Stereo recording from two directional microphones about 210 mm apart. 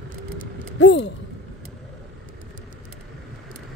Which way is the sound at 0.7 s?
60° left (ahead or behind).